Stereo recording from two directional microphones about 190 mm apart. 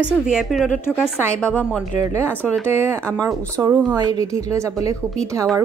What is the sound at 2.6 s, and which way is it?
Speech, 15° right (ahead or behind).